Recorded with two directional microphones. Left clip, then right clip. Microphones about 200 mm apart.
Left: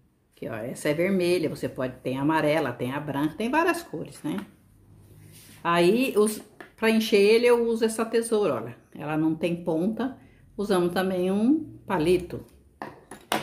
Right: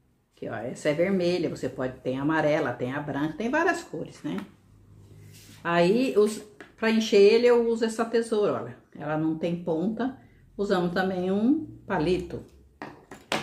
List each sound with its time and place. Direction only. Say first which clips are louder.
0.4 s speech: even; 45° left (ahead or behind)
5.6 s speech: left 1 dB; 45° left (ahead or behind)